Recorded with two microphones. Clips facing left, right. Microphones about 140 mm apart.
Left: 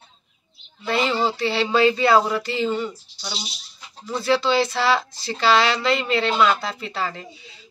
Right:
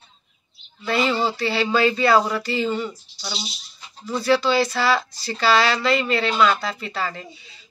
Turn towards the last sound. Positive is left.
turn(degrees=20)  # may be behind; listen again after turning